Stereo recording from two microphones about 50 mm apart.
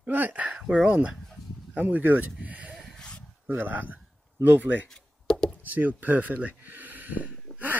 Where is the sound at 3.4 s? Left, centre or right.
Right.